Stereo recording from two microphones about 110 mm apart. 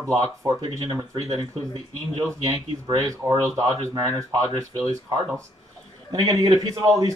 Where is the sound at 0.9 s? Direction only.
35° right (ahead or behind).